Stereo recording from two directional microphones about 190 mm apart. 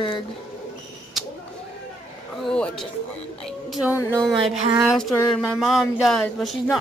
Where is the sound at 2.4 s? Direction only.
5° left (ahead or behind).